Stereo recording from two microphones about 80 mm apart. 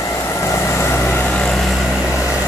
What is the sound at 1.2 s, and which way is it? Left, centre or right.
Vehicle, centre.